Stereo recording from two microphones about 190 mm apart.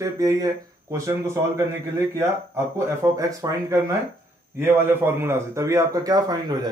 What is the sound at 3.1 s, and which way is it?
Speech, 15° right (ahead or behind).